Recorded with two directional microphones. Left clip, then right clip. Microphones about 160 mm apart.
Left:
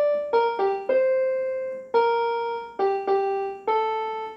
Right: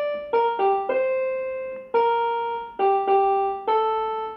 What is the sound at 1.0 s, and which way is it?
Keyboard, 30° right (ahead or behind).